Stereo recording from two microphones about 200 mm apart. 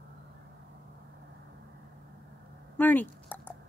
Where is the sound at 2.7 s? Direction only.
10° left (ahead or behind).